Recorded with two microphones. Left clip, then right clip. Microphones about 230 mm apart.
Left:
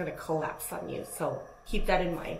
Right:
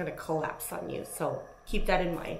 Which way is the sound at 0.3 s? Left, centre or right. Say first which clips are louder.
Even; right.